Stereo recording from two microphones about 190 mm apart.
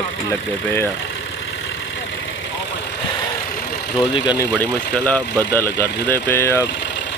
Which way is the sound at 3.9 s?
20° left (ahead or behind).